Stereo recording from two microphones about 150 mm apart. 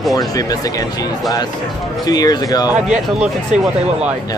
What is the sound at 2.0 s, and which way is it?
Speech, 25° left (ahead or behind).